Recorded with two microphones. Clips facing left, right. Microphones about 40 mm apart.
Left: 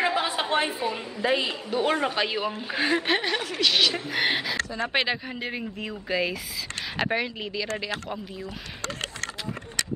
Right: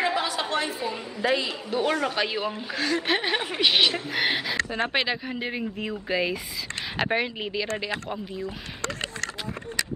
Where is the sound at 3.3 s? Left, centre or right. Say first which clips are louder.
Right 1 dB; right.